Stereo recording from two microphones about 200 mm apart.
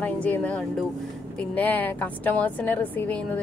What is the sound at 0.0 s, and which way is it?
A woman's voice, 5° left (ahead or behind).